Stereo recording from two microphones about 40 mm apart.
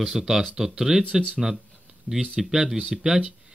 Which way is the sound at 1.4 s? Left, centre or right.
Centre.